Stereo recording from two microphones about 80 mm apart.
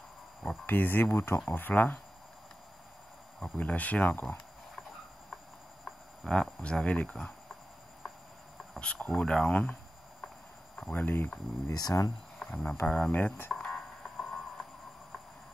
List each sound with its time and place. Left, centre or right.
0.7 s speech: left
3.3 s speech: centre
5.9 s speech: centre
8.7 s speech: centre
10.8 s speech: left
11.7 s speech: left
12.4 s cricket: centre
12.8 s speech: centre
13.1 s speech: left
13.5 s guitar: centre